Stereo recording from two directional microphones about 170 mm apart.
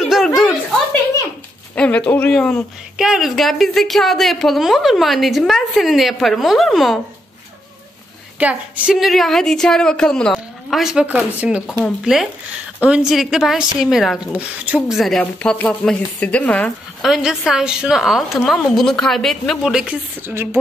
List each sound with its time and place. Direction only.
0.0 s a sound: centre (ahead or behind)
1.8 s speech: 10° left (ahead or behind)
8.4 s speech: 10° right (ahead or behind)